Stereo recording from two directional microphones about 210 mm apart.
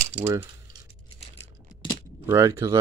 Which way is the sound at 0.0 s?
30° right (ahead or behind).